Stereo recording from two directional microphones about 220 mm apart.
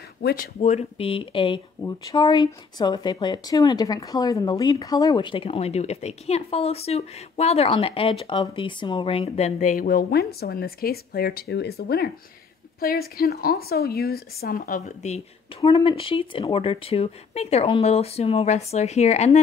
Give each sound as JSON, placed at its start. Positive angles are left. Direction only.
{"t": 0.2, "sound": "speech", "side_deg": 45}